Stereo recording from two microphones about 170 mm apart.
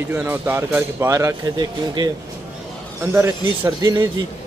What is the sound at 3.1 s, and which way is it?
Speech, 15° right (ahead or behind).